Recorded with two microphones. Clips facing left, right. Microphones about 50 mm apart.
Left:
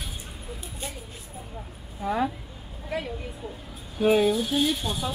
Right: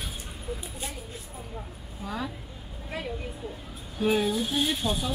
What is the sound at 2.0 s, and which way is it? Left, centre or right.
Speech, left.